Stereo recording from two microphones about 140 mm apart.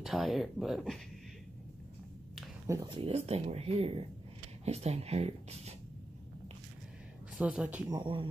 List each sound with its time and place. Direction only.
0.0 s speech: centre (ahead or behind)
2.6 s speech: 25° right (ahead or behind)
2.9 s speech: 45° right (ahead or behind)
7.3 s speech: 10° right (ahead or behind)
7.9 s speech: 35° right (ahead or behind)